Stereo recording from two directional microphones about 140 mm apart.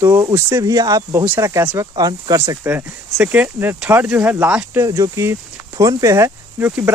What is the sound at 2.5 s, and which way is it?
Speech, 15° right (ahead or behind).